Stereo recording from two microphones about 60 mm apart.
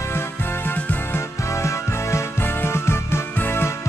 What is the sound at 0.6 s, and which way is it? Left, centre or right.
Music, left.